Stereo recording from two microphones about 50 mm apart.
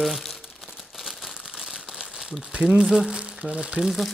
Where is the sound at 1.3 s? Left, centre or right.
Centre.